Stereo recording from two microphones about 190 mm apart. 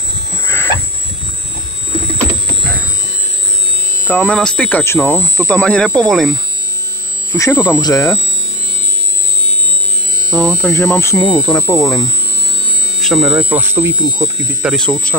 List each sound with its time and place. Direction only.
0.5 s a sound: 15° left (ahead or behind)
4.1 s speech: 5° left (ahead or behind)
7.3 s speech: 15° left (ahead or behind)
10.3 s speech: 5° left (ahead or behind)
13.0 s speech: 5° right (ahead or behind)
14.6 s speech: centre (ahead or behind)